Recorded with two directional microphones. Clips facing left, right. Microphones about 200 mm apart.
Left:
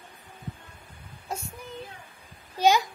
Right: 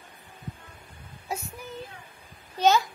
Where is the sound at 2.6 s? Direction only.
15° left (ahead or behind).